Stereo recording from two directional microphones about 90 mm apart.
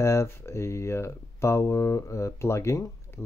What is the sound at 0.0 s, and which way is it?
Speech, 35° left (ahead or behind).